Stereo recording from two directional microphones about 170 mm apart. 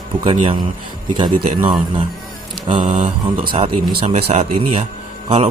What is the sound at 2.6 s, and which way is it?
A man's voice, 45° right (ahead or behind).